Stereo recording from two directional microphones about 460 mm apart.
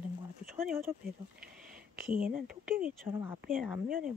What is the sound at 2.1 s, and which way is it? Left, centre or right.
Speech, centre.